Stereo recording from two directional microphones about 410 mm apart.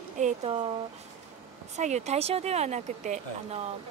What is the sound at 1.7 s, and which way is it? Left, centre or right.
Speech, centre.